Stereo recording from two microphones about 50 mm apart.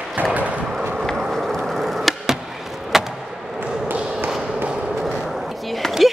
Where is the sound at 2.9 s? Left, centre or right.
Centre.